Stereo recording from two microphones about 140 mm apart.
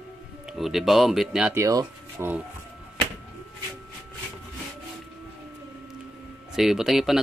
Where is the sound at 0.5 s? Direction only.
Centre (ahead or behind).